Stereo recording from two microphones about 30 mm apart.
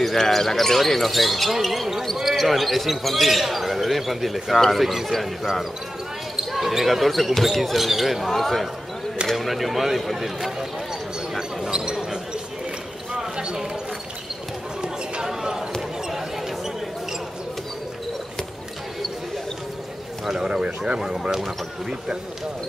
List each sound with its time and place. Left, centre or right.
0.0 s speech: centre
0.8 s speech: centre
4.8 s speech: centre
6.5 s speech: centre
8.3 s speech: centre
11.3 s basketball bounce: right
15.2 s basketball bounce: centre
20.2 s speech: right